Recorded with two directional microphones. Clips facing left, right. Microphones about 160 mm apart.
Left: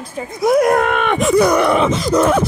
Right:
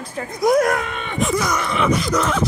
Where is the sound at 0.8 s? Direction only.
65° left (ahead or behind).